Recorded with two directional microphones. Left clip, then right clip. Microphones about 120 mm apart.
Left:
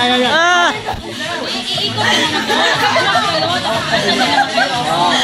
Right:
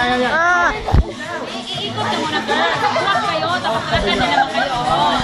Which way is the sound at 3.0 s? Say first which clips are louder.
Left 3 dB; 40° left (ahead or behind).